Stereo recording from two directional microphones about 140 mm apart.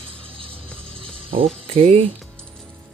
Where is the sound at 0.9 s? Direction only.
40° right (ahead or behind).